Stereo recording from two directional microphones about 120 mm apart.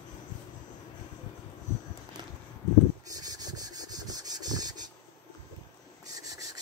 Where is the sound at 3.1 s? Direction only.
30° right (ahead or behind).